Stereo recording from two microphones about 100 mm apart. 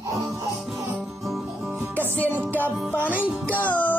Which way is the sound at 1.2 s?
Centre (ahead or behind).